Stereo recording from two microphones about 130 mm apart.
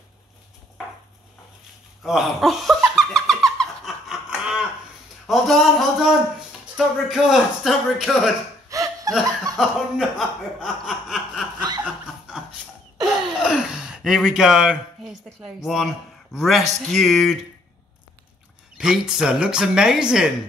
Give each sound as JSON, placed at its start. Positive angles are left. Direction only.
{"t": 2.0, "sound": "laughter", "side_deg": 0}
{"t": 5.2, "sound": "speech", "side_deg": 0}
{"t": 8.6, "sound": "laughter", "side_deg": -25}
{"t": 9.6, "sound": "speech", "side_deg": 0}
{"t": 13.0, "sound": "a sound", "side_deg": -5}
{"t": 15.4, "sound": "speech", "side_deg": 0}
{"t": 18.8, "sound": "speech", "side_deg": -5}